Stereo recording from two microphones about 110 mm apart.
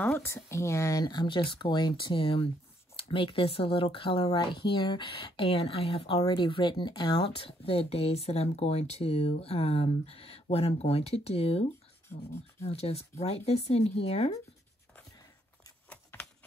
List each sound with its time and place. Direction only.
0.0 s speech: 20° left (ahead or behind); by 7.2 s 40° left (ahead or behind)
7.2 s speech: 60° left (ahead or behind)
12.6 s speech: 70° left (ahead or behind)
15.9 s a sound: 15° left (ahead or behind)